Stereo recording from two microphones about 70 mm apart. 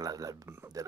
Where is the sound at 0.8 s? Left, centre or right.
Right.